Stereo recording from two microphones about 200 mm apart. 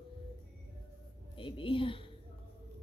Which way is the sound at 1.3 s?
25° left (ahead or behind).